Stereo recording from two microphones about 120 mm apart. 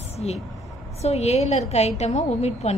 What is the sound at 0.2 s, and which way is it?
A woman's voice, 60° left (ahead or behind).